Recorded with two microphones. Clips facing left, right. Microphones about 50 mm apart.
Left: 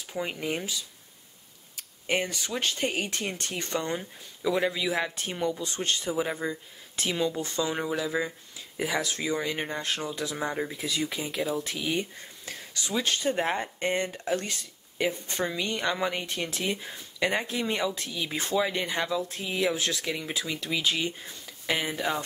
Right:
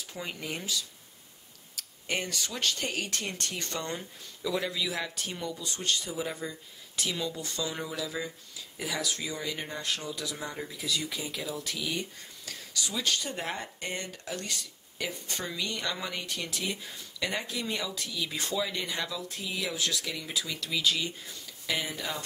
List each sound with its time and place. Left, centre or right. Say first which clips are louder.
0.0 s speech: left 6 dB; left